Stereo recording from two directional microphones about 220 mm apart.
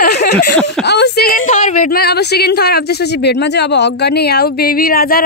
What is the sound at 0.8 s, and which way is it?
A woman's voice, 50° left (ahead or behind).